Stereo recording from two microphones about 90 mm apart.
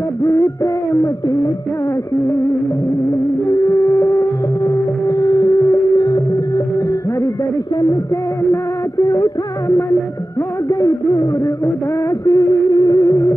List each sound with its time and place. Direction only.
0.2 s music: 30° left (ahead or behind)
1.0 s a sound: 45° left (ahead or behind)
3.4 s a sound: 35° left (ahead or behind)
4.6 s music: 40° left (ahead or behind)
6.0 s music: 45° left (ahead or behind)
9.1 s music: 35° left (ahead or behind)